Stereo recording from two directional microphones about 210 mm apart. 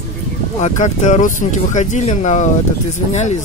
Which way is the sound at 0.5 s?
35° left (ahead or behind).